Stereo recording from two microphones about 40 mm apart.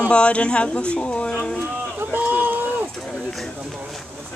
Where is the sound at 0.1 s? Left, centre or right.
Left.